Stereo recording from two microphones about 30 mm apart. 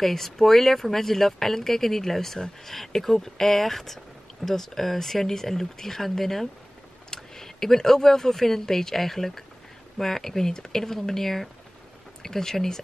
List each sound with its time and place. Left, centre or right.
0.0 s speech: centre